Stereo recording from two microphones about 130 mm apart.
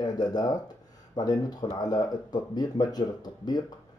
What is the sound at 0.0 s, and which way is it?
Speech, 30° left (ahead or behind).